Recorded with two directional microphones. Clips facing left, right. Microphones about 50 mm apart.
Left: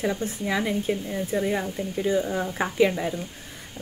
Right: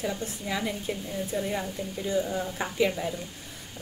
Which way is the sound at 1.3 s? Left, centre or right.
Left.